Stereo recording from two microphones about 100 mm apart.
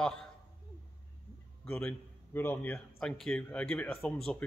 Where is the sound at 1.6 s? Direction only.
10° left (ahead or behind).